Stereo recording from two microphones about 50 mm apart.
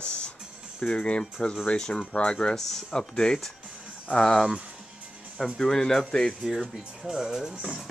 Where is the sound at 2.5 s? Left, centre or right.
Centre.